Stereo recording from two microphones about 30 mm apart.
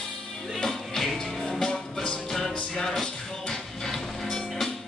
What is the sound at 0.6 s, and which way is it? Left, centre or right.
Music, centre.